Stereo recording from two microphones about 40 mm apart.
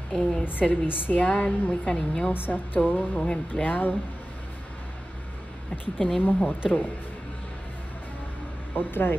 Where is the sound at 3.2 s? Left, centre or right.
Centre.